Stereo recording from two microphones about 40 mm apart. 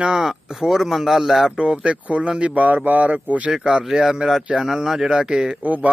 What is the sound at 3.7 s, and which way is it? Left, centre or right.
Speech, centre.